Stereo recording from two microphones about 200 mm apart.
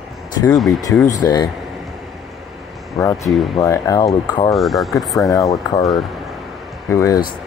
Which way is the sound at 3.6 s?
15° left (ahead or behind).